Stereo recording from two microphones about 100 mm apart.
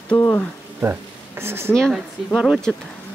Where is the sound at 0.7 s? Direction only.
25° right (ahead or behind).